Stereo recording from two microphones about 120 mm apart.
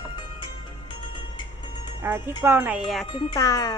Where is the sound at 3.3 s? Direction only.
30° left (ahead or behind).